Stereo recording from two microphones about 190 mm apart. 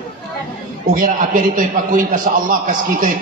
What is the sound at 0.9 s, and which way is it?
A man's voice, 45° right (ahead or behind).